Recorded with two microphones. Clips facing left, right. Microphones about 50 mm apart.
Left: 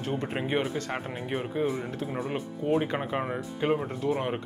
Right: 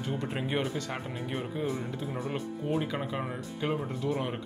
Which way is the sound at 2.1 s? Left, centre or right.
Centre.